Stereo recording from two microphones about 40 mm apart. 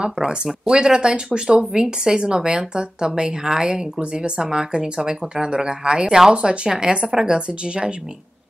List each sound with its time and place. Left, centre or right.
0.0 s speech: right